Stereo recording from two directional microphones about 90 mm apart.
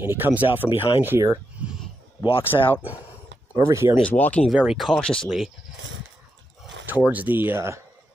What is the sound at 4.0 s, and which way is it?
Speech, 15° left (ahead or behind).